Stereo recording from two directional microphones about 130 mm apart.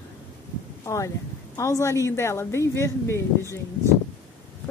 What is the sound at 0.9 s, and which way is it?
A woman's voice, 25° left (ahead or behind).